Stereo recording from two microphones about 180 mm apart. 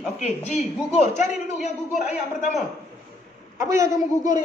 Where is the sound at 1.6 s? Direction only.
40° left (ahead or behind).